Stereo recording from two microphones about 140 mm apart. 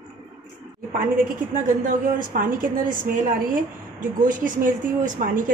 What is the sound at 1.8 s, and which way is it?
A woman's voice, 75° right (ahead or behind).